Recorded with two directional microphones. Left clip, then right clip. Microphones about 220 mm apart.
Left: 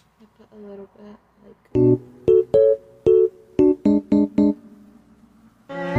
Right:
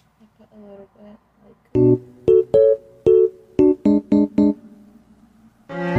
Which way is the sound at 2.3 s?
Centre (ahead or behind).